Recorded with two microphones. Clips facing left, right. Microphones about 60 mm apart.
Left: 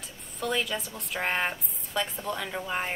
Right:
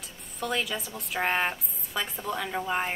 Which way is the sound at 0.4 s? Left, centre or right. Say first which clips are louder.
Left 1 dB; centre.